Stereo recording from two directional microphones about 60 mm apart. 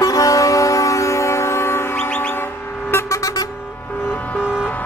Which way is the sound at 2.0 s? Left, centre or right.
Left.